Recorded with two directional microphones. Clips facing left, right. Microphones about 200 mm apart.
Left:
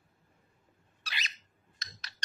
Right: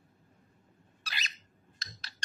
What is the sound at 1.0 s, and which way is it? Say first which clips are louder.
Cat: even; 40° right (ahead or behind).